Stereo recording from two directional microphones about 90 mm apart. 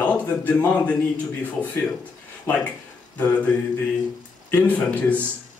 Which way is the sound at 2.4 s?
15° left (ahead or behind).